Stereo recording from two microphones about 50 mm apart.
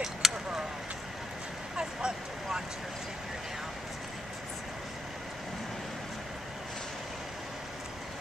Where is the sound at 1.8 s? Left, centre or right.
Centre.